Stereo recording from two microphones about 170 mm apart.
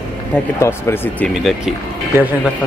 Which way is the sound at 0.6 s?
15° left (ahead or behind).